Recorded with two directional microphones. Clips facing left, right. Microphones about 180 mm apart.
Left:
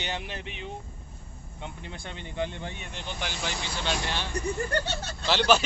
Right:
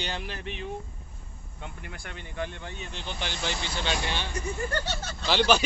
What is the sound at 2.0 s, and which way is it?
Speech, 20° left (ahead or behind).